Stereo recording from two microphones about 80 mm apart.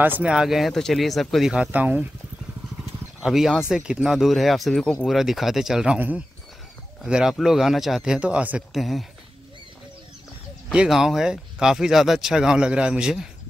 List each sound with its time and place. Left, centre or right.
0.0 s speech: right
0.3 s speech: centre
1.5 s speech: centre
2.8 s speech: centre
5.9 s speech: right
7.1 s speech: centre
8.7 s speech: centre
10.7 s speech: centre